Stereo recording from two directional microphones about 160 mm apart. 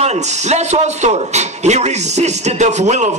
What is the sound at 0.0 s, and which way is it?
A man's voice, 45° right (ahead or behind).